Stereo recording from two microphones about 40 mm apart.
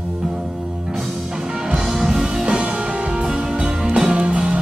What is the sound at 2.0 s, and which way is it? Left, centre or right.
Music, centre.